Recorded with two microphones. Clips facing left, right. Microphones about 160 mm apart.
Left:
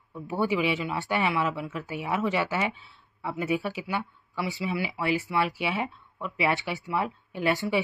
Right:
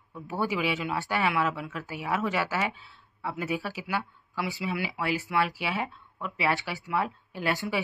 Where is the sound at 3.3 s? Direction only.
Centre (ahead or behind).